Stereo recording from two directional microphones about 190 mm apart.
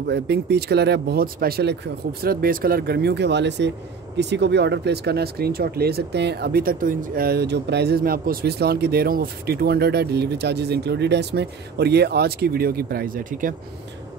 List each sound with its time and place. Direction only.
0.0 s speech: 60° right (ahead or behind)